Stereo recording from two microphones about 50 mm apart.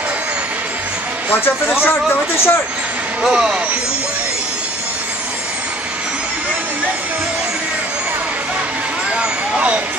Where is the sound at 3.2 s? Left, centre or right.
Centre.